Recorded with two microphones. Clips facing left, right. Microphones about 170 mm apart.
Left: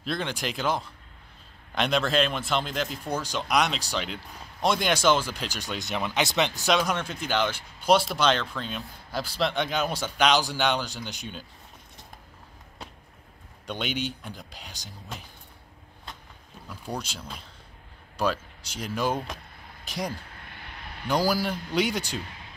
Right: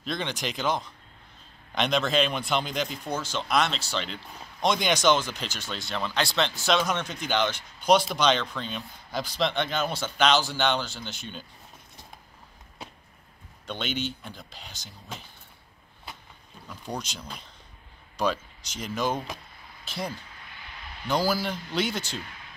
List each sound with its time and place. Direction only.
0.0 s speech: 5° left (ahead or behind)
13.7 s speech: 10° left (ahead or behind)
16.6 s speech: 10° left (ahead or behind)